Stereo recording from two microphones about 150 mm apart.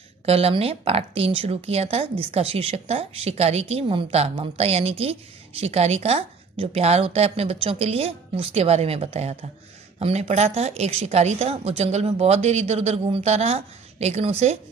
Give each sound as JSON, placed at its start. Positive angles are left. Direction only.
{"t": 0.2, "sound": "a woman's voice", "side_deg": -40}